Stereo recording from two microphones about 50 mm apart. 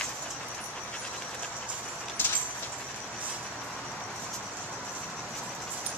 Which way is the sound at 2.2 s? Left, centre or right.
Left.